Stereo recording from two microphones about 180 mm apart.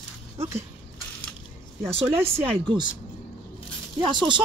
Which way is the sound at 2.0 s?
10° right (ahead or behind).